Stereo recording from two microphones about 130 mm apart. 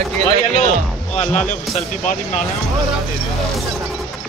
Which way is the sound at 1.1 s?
60° left (ahead or behind).